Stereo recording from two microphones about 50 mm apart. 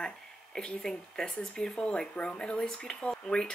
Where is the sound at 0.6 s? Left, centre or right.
Centre.